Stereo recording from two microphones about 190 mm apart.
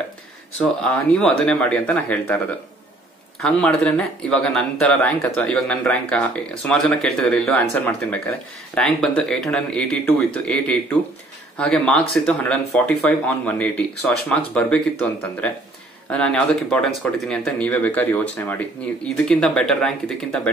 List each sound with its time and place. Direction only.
0.6 s speech: 5° left (ahead or behind)
3.4 s speech: 5° left (ahead or behind)